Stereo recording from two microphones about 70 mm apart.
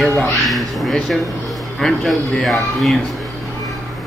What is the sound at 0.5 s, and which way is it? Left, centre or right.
Speech, centre.